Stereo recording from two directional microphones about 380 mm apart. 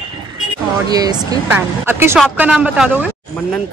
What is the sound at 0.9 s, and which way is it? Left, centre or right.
Speech, centre.